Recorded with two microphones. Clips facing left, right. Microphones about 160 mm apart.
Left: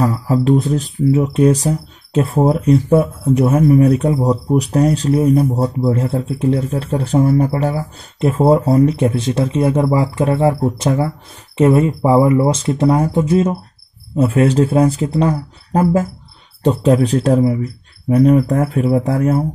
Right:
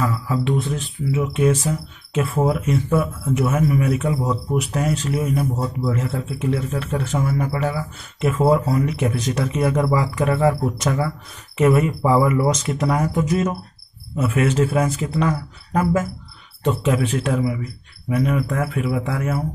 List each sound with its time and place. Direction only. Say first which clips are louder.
0.0 s speech: left 7 dB; 35° left (ahead or behind)